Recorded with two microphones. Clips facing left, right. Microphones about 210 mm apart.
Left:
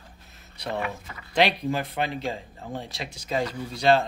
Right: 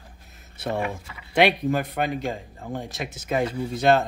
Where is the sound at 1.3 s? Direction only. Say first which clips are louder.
Right 3 dB; 50° right (ahead or behind).